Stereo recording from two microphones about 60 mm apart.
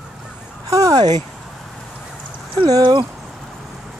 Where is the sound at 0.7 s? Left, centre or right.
Right.